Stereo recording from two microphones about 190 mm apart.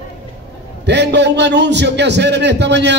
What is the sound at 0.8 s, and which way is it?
A man's voice, 65° right (ahead or behind).